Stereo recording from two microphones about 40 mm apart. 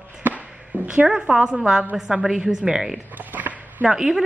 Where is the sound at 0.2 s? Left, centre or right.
Right.